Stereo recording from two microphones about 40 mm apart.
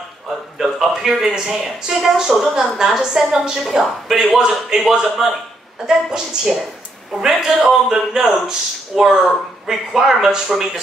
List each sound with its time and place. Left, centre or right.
0.6 s a man's voice: centre